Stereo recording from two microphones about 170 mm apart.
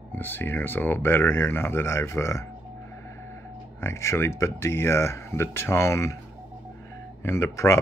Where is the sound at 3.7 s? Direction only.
15° left (ahead or behind).